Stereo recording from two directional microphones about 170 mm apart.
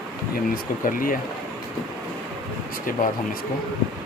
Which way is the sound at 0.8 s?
55° left (ahead or behind).